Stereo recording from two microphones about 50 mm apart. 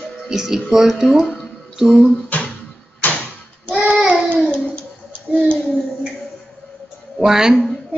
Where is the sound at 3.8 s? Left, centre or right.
Right.